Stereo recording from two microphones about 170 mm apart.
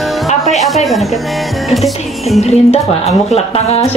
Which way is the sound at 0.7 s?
Centre (ahead or behind).